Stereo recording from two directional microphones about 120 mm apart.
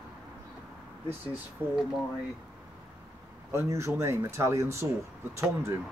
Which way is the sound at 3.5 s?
25° right (ahead or behind).